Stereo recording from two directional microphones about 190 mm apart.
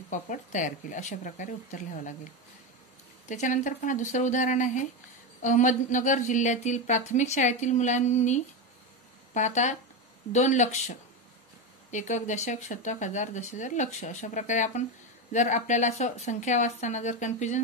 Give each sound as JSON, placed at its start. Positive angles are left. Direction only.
{"t": 0.1, "sound": "a woman's voice", "side_deg": 40}
{"t": 3.3, "sound": "a woman's voice", "side_deg": 40}